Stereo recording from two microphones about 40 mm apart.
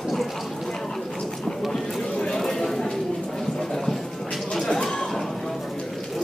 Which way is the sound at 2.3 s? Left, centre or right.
Centre.